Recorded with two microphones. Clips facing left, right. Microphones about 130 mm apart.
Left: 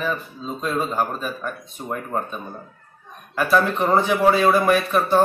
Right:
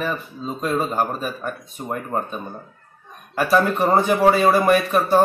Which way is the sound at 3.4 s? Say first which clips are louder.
Right 1 dB; 10° right (ahead or behind).